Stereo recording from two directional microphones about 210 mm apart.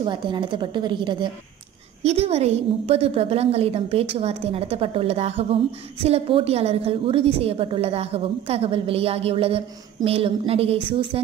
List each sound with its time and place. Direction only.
0.0 s a woman's voice: 20° right (ahead or behind)